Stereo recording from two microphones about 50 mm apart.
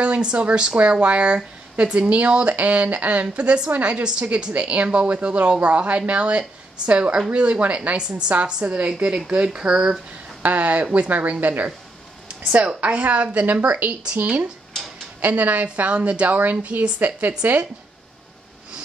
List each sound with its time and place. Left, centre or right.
0.0 s speech: right
10.4 s a woman's voice: right
12.4 s a woman's voice: right